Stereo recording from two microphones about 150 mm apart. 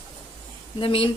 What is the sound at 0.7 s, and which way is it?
Speech, 35° left (ahead or behind).